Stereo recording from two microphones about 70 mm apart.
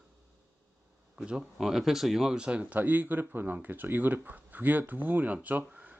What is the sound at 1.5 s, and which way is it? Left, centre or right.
Speech, centre.